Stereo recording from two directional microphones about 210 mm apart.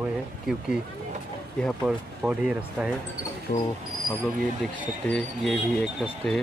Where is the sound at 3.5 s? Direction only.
35° left (ahead or behind).